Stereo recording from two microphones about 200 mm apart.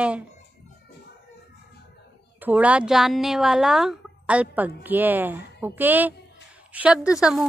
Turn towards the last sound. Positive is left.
turn(degrees=-5)  # may be behind; listen again after turning